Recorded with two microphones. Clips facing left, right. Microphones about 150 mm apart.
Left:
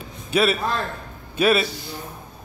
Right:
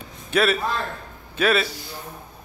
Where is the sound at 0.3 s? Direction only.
5° left (ahead or behind).